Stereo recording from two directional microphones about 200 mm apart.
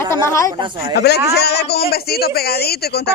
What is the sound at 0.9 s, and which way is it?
A man's voice, 55° left (ahead or behind).